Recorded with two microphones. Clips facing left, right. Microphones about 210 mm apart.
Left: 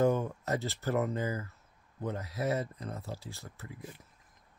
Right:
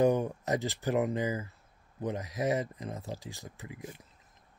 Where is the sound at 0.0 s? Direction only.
15° right (ahead or behind).